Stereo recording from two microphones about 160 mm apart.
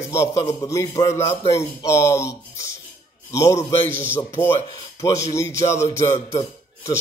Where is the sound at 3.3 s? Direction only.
20° left (ahead or behind).